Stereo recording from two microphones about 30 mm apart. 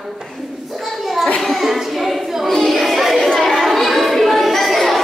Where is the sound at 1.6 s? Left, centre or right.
Centre.